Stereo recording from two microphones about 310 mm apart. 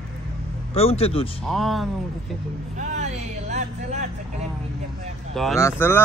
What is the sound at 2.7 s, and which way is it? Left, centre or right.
Speech, right.